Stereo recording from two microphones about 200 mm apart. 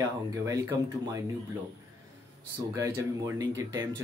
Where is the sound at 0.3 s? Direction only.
15° right (ahead or behind).